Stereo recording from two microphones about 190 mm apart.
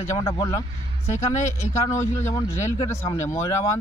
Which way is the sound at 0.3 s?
20° left (ahead or behind).